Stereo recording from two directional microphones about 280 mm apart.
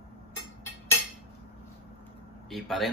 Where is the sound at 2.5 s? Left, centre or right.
Centre.